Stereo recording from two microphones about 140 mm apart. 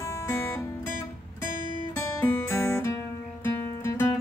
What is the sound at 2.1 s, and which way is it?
Music, 20° left (ahead or behind).